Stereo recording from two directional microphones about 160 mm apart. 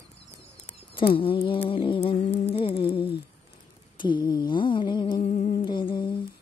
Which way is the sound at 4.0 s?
30° left (ahead or behind).